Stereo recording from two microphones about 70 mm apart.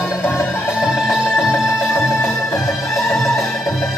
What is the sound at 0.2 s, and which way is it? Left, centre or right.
Music, left.